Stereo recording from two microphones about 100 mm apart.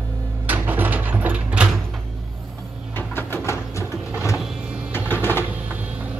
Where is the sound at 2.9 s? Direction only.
20° left (ahead or behind).